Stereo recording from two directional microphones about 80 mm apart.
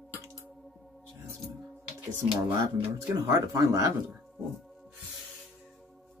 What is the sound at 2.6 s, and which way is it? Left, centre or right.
Speech, right.